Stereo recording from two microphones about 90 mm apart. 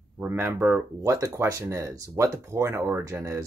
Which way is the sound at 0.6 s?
20° right (ahead or behind).